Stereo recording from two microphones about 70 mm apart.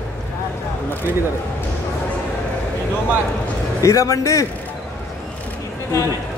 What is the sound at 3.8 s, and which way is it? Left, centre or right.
Speech, left.